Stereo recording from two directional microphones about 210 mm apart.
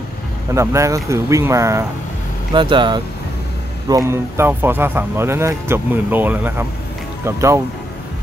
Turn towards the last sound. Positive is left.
turn(degrees=-15)  # may be behind; listen again after turning